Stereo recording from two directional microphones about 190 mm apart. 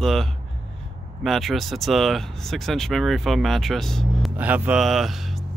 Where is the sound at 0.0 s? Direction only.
Centre (ahead or behind).